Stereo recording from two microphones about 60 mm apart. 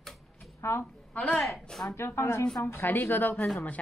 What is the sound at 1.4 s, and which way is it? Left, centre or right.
Speech, centre.